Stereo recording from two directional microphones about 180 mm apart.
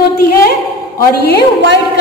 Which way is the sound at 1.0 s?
65° left (ahead or behind).